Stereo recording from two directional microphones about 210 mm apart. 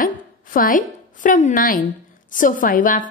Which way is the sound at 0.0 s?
40° left (ahead or behind).